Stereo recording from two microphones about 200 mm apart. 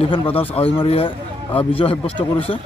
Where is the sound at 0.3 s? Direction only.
10° left (ahead or behind).